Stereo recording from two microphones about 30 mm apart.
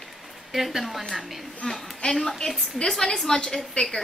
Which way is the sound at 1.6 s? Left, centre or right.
Left.